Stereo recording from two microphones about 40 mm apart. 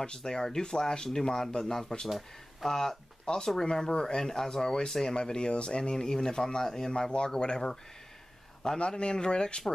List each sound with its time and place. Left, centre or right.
0.0 s speech: centre
2.0 s speech: centre
2.7 s speech: centre
6.9 s speech: left